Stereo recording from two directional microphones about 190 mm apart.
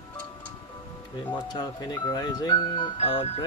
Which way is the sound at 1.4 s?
20° left (ahead or behind).